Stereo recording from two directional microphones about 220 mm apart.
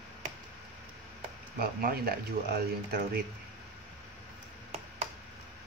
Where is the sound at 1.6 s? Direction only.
45° right (ahead or behind).